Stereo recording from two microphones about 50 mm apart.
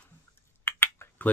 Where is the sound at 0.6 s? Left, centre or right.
Left.